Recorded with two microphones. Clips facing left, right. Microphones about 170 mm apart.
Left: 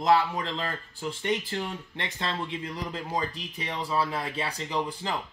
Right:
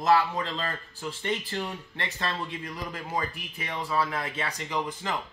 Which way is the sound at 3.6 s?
10° left (ahead or behind).